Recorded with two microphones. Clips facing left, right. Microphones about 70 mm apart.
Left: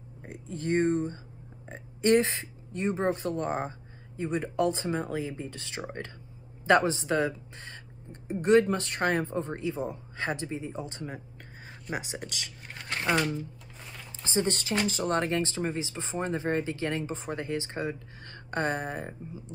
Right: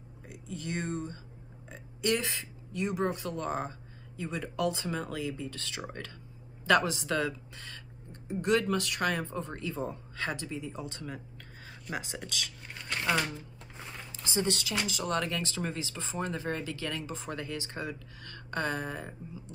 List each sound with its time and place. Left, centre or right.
0.2 s speech: left
14.2 s speech: left